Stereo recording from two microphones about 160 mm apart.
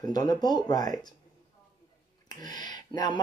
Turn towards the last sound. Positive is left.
turn(degrees=25)  # may be behind; listen again after turning